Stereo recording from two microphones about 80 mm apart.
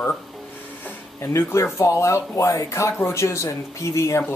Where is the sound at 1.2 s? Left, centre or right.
Left.